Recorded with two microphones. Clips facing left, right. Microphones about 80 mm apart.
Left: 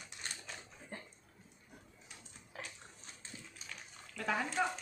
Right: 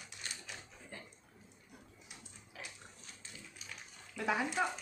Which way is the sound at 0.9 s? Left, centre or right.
Left.